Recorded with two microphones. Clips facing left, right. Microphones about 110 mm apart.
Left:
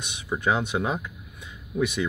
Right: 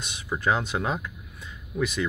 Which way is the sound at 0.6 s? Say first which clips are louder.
Left 1 dB; 20° left (ahead or behind).